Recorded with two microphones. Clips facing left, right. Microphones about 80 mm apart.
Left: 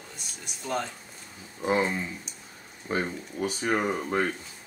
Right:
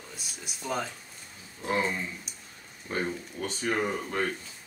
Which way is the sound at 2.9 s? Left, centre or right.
Centre.